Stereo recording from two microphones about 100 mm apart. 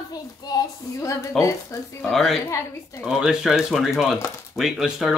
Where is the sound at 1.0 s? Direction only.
30° left (ahead or behind).